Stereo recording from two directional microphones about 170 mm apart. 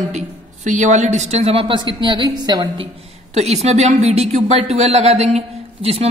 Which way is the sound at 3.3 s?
40° right (ahead or behind).